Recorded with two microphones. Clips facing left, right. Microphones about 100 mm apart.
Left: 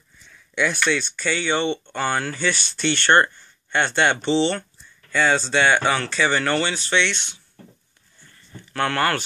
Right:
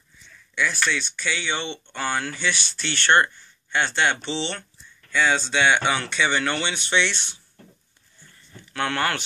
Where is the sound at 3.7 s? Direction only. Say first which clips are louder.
Left 3 dB; 55° left (ahead or behind).